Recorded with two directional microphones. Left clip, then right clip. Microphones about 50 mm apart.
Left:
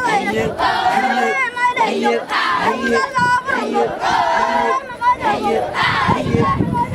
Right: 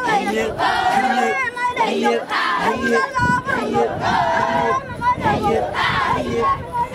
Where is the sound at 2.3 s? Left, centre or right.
Centre.